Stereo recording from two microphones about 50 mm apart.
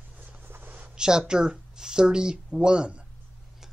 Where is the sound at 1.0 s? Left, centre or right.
Centre.